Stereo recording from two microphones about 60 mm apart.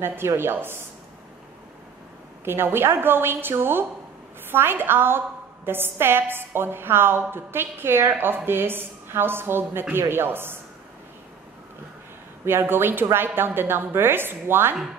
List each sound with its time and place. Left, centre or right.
0.0 s a woman's voice: right
2.4 s a woman's voice: right
12.4 s a woman's voice: right